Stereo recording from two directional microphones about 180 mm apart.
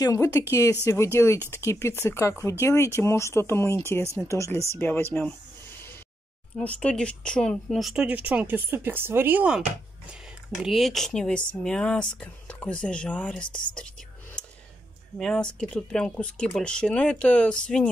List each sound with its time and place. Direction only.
0.0 s speech: 15° left (ahead or behind)
6.6 s speech: 5° left (ahead or behind); by 9.6 s 10° right (ahead or behind)
10.6 s speech: centre (ahead or behind)
15.1 s speech: 5° left (ahead or behind)